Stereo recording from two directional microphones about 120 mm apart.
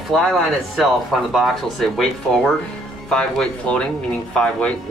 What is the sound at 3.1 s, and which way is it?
Speech, 10° left (ahead or behind).